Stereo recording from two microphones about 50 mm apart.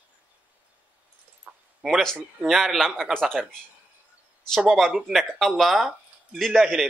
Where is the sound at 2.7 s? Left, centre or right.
Centre.